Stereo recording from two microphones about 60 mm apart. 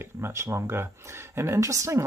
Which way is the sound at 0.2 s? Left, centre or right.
Right.